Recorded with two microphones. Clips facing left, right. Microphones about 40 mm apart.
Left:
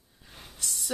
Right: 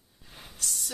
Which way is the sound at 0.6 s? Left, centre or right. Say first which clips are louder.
Right 1 dB; centre.